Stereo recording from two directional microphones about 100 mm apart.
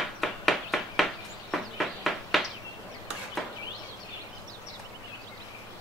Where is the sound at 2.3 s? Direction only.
Centre (ahead or behind).